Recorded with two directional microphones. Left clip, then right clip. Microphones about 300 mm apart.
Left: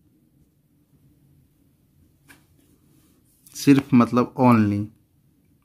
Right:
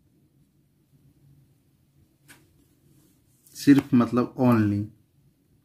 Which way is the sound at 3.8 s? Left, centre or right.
Left.